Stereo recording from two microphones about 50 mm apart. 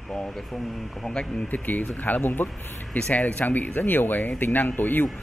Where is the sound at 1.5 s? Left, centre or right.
Left.